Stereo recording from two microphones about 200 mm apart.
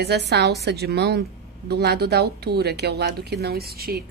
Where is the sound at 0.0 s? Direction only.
55° right (ahead or behind).